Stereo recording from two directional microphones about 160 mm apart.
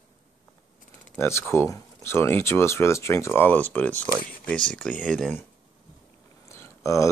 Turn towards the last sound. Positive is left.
turn(degrees=15)  # may be behind; listen again after turning